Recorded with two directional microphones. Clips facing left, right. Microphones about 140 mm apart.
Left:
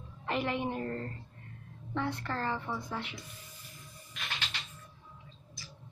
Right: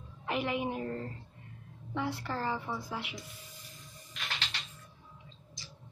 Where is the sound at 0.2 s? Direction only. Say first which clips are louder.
Even; 5° right (ahead or behind).